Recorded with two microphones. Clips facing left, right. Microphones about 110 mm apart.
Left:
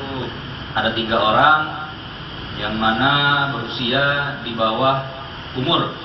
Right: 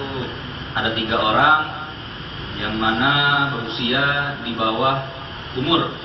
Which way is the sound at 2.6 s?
25° left (ahead or behind).